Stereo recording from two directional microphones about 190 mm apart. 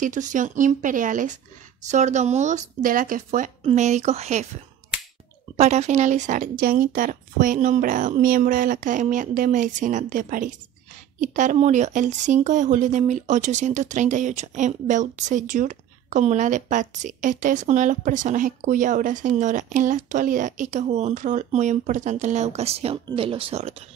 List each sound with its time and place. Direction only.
0.0 s speech: 40° right (ahead or behind)
5.6 s speech: 35° right (ahead or behind)